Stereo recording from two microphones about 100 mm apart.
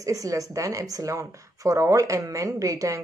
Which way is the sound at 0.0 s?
35° right (ahead or behind).